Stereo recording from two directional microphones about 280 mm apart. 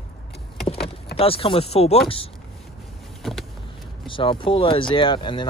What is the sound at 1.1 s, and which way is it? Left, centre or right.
Chopping, centre.